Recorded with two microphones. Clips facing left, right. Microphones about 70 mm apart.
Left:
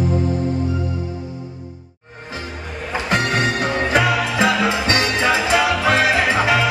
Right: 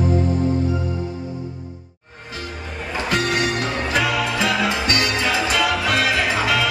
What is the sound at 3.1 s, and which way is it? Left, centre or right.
Music, left.